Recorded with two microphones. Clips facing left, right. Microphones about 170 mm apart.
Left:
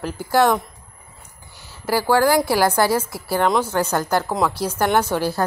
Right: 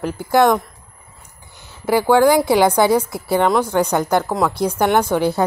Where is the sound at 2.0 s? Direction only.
20° right (ahead or behind).